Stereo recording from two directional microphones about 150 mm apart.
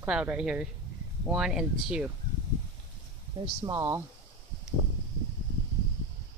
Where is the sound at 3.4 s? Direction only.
25° right (ahead or behind).